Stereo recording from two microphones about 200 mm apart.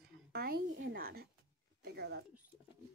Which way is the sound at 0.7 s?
65° right (ahead or behind).